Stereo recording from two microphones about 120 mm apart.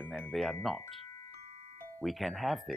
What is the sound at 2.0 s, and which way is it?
Speech, centre (ahead or behind).